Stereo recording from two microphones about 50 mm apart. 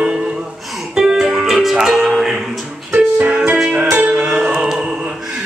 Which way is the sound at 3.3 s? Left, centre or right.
Centre.